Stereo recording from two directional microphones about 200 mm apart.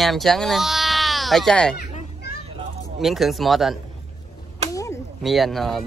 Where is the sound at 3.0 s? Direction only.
Centre (ahead or behind).